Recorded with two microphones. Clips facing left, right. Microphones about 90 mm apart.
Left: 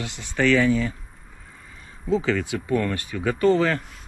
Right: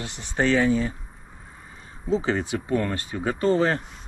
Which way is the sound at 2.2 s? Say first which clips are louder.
Left 1 dB; 25° right (ahead or behind).